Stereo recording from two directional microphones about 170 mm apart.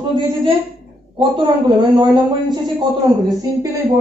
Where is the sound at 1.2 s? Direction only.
25° right (ahead or behind).